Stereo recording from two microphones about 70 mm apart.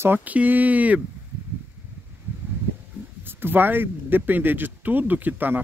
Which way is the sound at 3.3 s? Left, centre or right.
Right.